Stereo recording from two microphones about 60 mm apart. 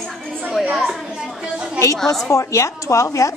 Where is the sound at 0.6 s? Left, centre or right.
Centre.